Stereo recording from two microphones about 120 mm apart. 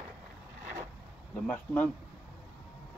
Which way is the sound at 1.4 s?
10° left (ahead or behind).